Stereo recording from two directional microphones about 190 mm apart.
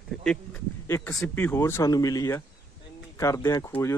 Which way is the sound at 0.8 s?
15° left (ahead or behind).